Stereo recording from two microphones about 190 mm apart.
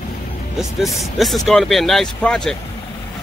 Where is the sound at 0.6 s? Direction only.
Centre (ahead or behind).